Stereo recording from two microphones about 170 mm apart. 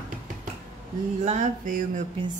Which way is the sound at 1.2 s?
45° right (ahead or behind).